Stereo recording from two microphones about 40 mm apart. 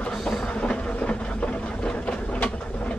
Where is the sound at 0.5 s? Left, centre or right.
Left.